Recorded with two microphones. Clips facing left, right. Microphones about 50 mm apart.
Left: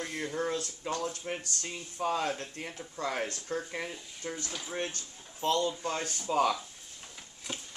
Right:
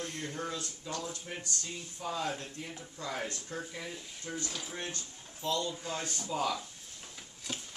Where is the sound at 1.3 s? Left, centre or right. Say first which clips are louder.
Left 6 dB; left.